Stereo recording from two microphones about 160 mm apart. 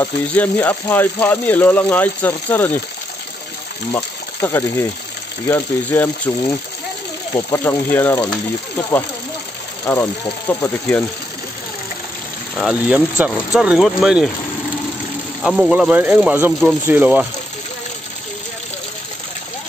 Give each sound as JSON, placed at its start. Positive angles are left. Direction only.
{"t": 0.0, "sound": "speech", "side_deg": 15}
{"t": 3.9, "sound": "speech", "side_deg": 15}
{"t": 7.3, "sound": "speech", "side_deg": 15}
{"t": 9.9, "sound": "speech", "side_deg": 15}
{"t": 12.5, "sound": "speech", "side_deg": 0}
{"t": 15.4, "sound": "speech", "side_deg": -5}